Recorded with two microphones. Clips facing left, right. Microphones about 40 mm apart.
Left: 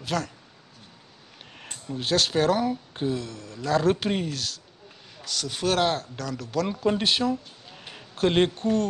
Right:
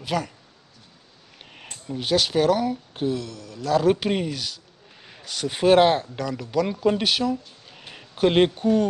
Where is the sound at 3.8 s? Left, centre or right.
Centre.